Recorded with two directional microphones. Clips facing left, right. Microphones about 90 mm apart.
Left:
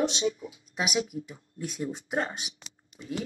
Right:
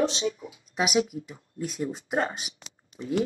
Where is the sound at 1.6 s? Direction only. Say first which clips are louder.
Right 3 dB; 35° right (ahead or behind).